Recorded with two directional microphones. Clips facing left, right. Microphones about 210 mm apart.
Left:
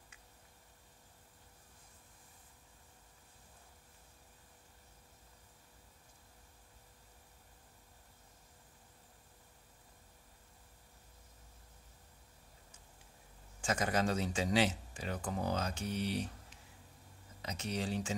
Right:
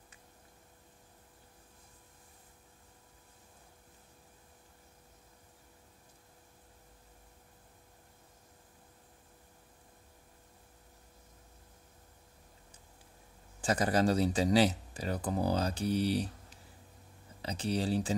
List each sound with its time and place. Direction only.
13.6 s speech: 35° right (ahead or behind)